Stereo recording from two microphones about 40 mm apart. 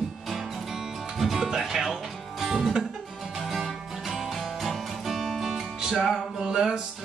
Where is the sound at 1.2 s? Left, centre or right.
Centre.